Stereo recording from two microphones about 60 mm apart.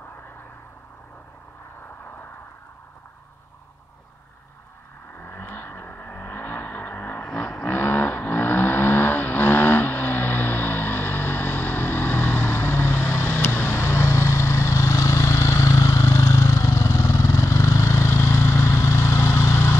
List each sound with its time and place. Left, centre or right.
5.1 s vehicle: left
7.2 s vehicle: centre
7.6 s vehicle: left